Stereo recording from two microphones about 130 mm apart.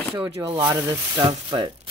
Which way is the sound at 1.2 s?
35° right (ahead or behind).